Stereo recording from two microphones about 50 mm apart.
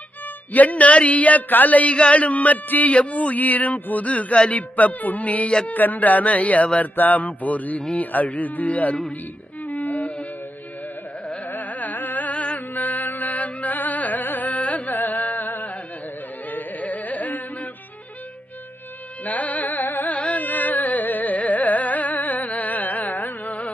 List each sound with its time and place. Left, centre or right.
0.5 s speech: left
9.7 s music: left
11.5 s carnatic music: left
19.2 s music: left